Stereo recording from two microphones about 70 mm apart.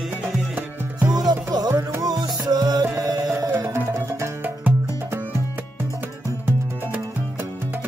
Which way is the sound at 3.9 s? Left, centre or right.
Right.